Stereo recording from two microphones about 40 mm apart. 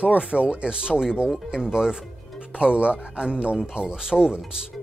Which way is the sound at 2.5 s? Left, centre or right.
Right.